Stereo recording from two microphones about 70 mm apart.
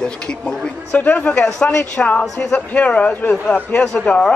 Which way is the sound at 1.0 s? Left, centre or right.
Left.